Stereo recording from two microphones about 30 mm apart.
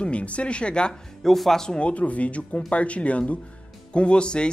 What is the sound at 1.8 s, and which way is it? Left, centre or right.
Speech, left.